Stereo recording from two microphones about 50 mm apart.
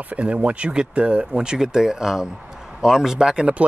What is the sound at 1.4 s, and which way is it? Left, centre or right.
Speech, centre.